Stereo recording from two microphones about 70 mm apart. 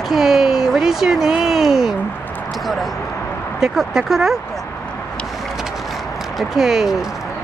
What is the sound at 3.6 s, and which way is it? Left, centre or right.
Speech, centre.